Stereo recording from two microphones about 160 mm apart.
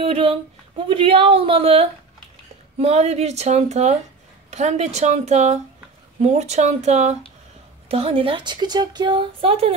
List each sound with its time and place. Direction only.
0.0 s speech: 35° right (ahead or behind)